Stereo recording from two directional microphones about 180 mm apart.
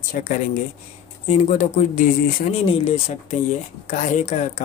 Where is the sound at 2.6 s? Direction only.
30° left (ahead or behind).